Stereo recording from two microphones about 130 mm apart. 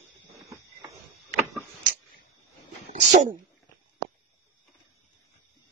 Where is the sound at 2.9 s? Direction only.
70° right (ahead or behind).